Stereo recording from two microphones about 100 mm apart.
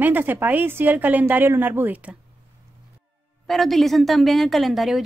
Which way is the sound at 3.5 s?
Centre (ahead or behind).